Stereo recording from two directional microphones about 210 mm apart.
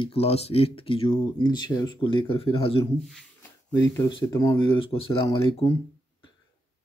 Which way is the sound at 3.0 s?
Centre (ahead or behind).